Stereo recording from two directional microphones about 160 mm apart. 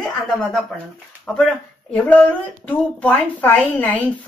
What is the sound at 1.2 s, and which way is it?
Speech, 5° left (ahead or behind).